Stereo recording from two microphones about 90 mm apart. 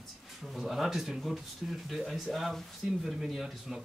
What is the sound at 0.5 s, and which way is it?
A man's voice, 5° right (ahead or behind).